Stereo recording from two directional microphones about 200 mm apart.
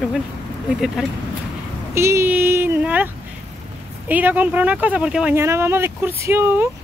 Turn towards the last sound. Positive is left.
turn(degrees=-10)  # may be behind; listen again after turning